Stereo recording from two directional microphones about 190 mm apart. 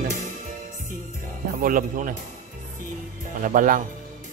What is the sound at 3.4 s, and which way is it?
Speech, 45° right (ahead or behind).